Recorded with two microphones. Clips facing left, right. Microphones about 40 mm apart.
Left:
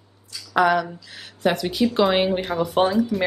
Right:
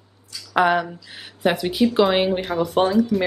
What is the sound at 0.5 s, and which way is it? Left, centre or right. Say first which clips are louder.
Speech: even; right.